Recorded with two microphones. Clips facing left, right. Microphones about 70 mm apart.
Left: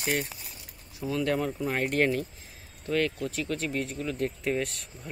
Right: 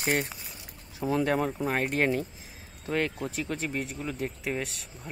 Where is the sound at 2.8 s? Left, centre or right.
Centre.